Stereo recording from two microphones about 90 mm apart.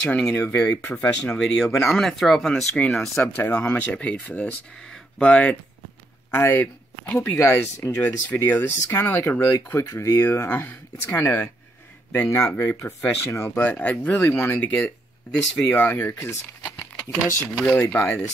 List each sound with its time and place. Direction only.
0.0 s speech: 10° left (ahead or behind)
7.3 s speech: 35° left (ahead or behind)
8.0 s speech: 20° left (ahead or behind)
10.2 s speech: 25° left (ahead or behind)
12.5 s speech: 25° left (ahead or behind)
17.6 s speech: 15° left (ahead or behind)